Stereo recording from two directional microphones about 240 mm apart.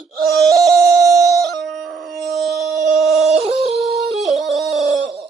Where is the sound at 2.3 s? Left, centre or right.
Centre.